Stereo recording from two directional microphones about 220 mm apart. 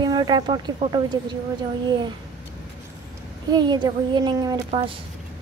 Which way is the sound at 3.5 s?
20° right (ahead or behind).